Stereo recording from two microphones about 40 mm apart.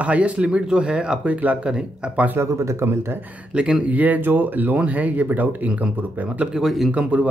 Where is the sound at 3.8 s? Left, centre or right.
Right.